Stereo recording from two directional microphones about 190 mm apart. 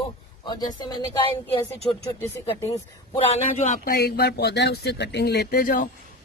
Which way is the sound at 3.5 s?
40° left (ahead or behind).